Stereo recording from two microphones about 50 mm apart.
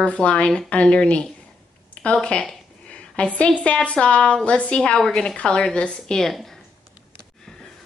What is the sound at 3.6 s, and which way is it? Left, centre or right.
A woman's voice, left.